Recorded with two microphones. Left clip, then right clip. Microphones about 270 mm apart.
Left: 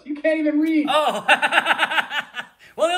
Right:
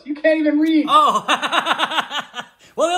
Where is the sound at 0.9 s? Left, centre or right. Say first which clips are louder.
Right 4 dB; centre.